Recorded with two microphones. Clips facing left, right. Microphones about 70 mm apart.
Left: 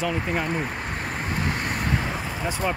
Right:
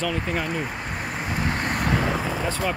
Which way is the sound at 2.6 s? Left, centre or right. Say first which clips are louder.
Left 2 dB; centre.